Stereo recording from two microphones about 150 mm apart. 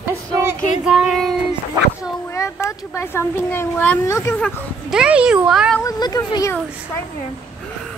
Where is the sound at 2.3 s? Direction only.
20° left (ahead or behind).